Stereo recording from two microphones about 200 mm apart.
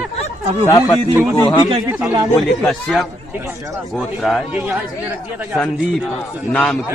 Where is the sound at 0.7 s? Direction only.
15° left (ahead or behind).